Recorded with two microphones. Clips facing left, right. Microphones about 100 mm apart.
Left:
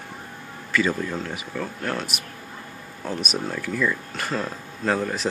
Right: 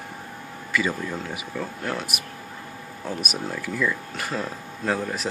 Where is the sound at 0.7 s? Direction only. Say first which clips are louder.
Left 2 dB; 10° right (ahead or behind).